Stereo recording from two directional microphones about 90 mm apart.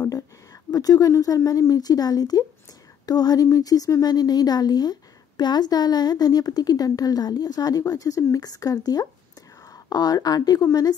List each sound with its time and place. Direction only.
0.7 s a woman's voice: 40° left (ahead or behind)